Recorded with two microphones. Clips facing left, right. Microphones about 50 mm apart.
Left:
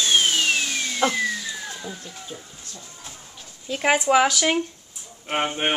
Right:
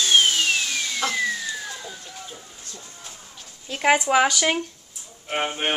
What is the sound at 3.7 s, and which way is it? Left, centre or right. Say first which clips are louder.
Speech: even; centre.